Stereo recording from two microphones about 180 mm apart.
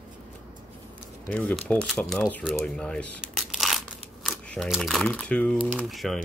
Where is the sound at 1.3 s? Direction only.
5° left (ahead or behind).